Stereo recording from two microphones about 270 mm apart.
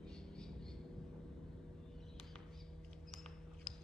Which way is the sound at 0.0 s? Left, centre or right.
Centre.